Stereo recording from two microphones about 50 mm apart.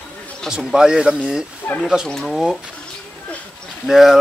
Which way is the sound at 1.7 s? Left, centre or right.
Left.